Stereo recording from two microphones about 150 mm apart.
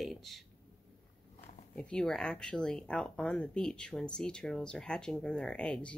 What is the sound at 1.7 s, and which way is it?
Speech, 5° left (ahead or behind).